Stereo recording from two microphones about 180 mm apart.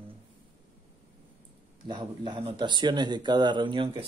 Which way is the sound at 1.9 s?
25° right (ahead or behind).